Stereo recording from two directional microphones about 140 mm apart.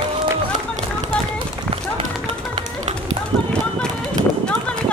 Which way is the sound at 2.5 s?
50° right (ahead or behind).